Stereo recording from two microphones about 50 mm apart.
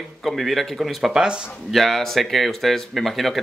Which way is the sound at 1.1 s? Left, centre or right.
Centre.